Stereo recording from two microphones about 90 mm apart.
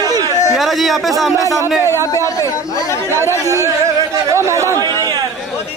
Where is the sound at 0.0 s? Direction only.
45° right (ahead or behind).